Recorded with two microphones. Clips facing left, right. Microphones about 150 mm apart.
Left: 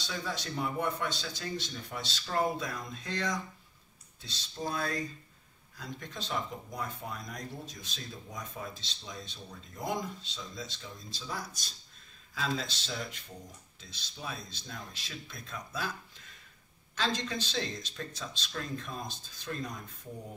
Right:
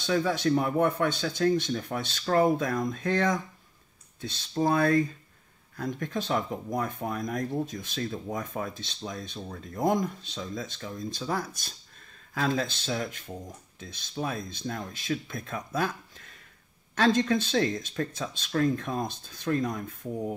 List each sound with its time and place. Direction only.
0.0 s speech: 55° right (ahead or behind)